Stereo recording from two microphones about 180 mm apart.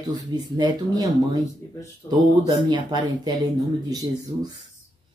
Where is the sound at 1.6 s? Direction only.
15° left (ahead or behind).